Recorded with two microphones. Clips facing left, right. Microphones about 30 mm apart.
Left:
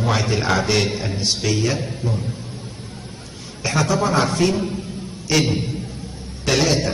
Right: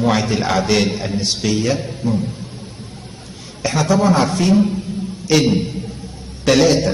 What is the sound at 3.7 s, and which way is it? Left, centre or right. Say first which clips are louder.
Speech: right 4 dB; right.